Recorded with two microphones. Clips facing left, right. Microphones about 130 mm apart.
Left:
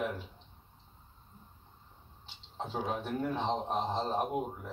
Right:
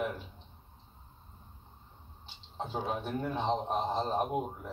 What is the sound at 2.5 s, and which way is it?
Speech, centre (ahead or behind).